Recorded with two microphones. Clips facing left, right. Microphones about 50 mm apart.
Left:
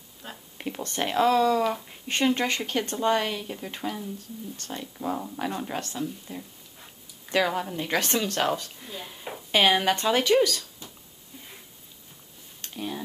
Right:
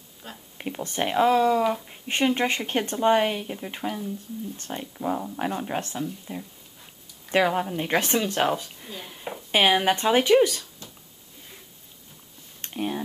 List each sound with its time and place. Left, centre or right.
0.6 s speech: centre
4.9 s speech: centre
7.2 s speech: right
8.7 s speech: centre; by 10.7 s right
12.6 s speech: right